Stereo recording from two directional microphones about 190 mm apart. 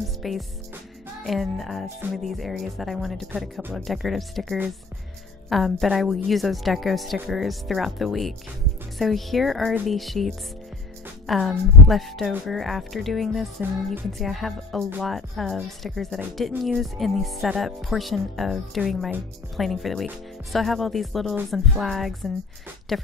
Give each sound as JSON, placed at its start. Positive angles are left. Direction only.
{"t": 0.2, "sound": "music", "side_deg": 0}
{"t": 1.2, "sound": "speech", "side_deg": 0}